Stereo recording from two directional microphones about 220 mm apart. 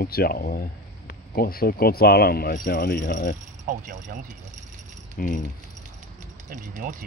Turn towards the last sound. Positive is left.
turn(degrees=-35)  # may be behind; listen again after turning